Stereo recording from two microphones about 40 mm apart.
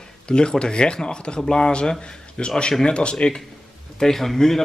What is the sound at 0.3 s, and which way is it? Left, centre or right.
A man's voice, left.